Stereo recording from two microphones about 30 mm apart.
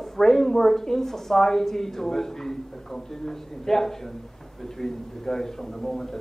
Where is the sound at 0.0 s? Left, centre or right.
Centre.